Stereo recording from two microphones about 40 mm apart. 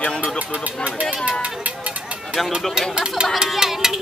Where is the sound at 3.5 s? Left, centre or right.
Centre.